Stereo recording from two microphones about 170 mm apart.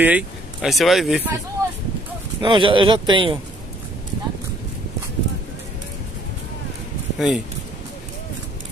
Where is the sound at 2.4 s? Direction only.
30° right (ahead or behind).